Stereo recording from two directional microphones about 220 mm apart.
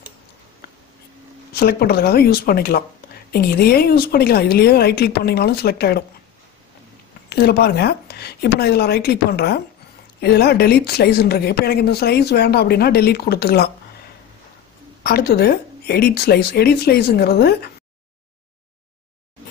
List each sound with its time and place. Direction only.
1.5 s a woman's voice: 45° left (ahead or behind)
7.2 s a woman's voice: 45° left (ahead or behind)
15.0 s a woman's voice: 45° left (ahead or behind)